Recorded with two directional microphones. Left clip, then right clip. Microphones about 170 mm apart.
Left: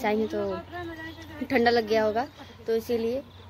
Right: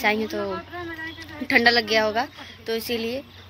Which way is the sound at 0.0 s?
Centre (ahead or behind).